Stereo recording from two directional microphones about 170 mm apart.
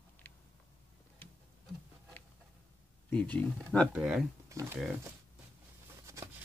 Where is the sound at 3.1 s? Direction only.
10° left (ahead or behind).